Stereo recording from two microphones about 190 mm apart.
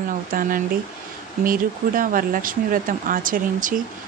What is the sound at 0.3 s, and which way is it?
Speech, 50° right (ahead or behind).